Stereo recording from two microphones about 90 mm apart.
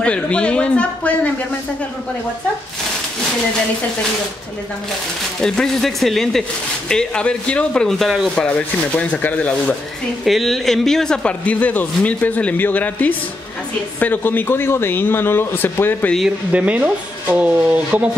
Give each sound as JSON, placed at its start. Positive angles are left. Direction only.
{"t": 0.0, "sound": "speech", "side_deg": 10}
{"t": 5.4, "sound": "speech", "side_deg": 5}
{"t": 8.4, "sound": "speech", "side_deg": 15}
{"t": 10.2, "sound": "a man's voice", "side_deg": 0}
{"t": 16.5, "sound": "speech", "side_deg": -15}